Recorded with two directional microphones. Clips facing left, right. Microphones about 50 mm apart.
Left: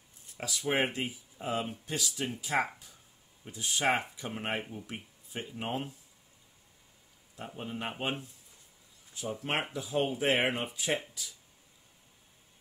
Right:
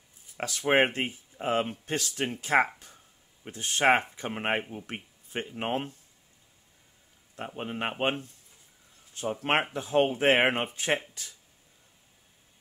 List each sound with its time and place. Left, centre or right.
0.4 s speech: right
7.3 s speech: right